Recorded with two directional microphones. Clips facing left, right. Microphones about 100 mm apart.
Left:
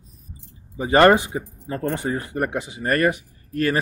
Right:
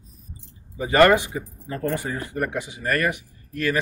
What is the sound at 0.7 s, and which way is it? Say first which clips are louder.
Speech: left 2 dB; 25° left (ahead or behind).